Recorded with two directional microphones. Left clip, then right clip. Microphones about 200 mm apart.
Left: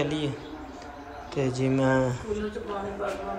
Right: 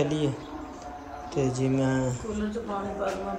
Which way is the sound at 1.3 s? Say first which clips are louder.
Even; 10° right (ahead or behind).